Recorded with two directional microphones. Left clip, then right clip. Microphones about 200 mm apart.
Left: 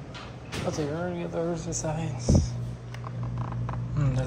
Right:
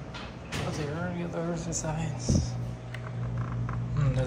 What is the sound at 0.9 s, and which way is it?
Speech, 25° left (ahead or behind).